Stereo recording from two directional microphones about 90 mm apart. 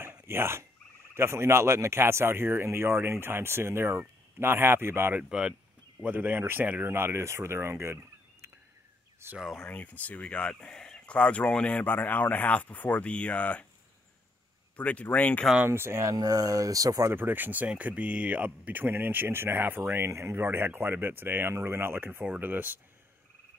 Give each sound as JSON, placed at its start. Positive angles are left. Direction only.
{"t": 0.0, "sound": "frog", "side_deg": -25}
{"t": 1.1, "sound": "speech", "side_deg": -30}
{"t": 9.4, "sound": "speech", "side_deg": 5}
{"t": 9.7, "sound": "speech", "side_deg": 15}
{"t": 14.8, "sound": "speech", "side_deg": 15}
{"t": 15.7, "sound": "speech", "side_deg": -30}
{"t": 17.1, "sound": "speech", "side_deg": -25}